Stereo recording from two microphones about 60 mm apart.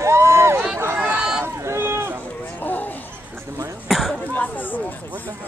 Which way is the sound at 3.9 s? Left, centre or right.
Centre.